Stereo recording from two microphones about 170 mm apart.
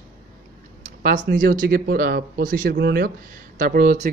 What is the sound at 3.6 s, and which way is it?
Speech, 50° right (ahead or behind).